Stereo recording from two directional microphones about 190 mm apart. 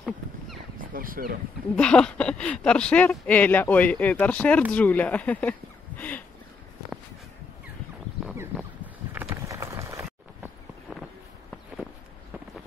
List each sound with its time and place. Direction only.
0.7 s speech: 50° right (ahead or behind)
1.8 s speech: 5° left (ahead or behind)
9.1 s a sound: 10° right (ahead or behind)